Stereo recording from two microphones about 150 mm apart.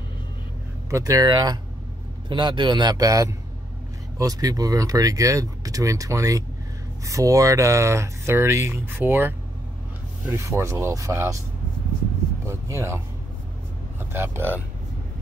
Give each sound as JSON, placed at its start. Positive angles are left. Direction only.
{"t": 0.8, "sound": "speech", "side_deg": -20}
{"t": 12.4, "sound": "speech", "side_deg": -20}